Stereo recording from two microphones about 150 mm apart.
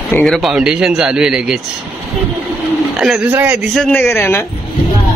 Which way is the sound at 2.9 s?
5° right (ahead or behind).